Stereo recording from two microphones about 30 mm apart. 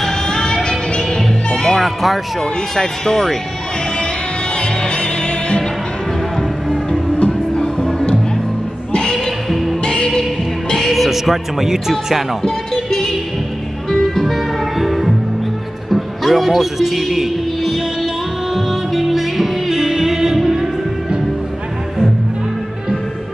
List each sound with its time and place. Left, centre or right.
0.3 s music: left
1.8 s speech: centre
2.7 s speech: centre
4.6 s music: left
8.9 s music: left
10.8 s music: centre
12.4 s music: centre
14.2 s music: centre